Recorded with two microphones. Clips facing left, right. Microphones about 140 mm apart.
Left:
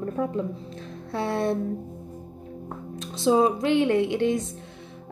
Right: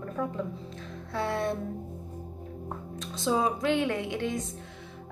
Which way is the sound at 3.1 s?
30° left (ahead or behind).